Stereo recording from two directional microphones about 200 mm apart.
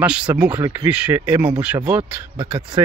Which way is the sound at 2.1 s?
25° right (ahead or behind).